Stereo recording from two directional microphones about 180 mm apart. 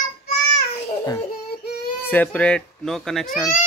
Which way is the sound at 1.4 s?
60° left (ahead or behind).